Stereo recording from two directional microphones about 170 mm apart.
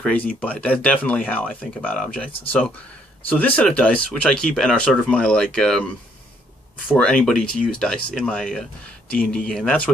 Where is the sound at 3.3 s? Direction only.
10° left (ahead or behind).